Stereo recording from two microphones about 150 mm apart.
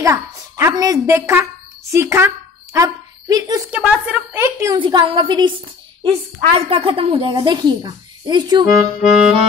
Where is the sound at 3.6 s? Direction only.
10° right (ahead or behind).